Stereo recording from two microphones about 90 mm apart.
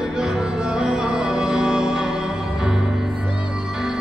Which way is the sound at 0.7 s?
10° right (ahead or behind).